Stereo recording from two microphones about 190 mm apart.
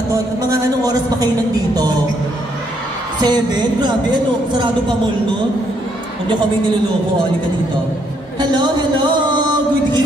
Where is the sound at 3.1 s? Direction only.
20° right (ahead or behind).